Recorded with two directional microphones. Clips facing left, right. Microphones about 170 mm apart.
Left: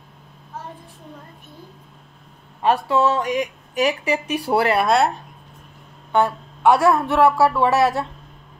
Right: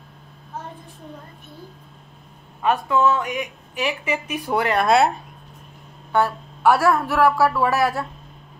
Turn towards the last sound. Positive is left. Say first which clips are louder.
# left 3 dB
turn(degrees=25)  # may be behind; listen again after turning